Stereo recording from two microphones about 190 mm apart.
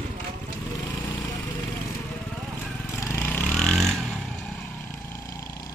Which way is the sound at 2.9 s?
10° left (ahead or behind).